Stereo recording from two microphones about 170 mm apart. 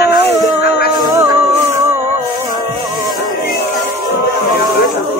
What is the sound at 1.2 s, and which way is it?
Music, 20° right (ahead or behind).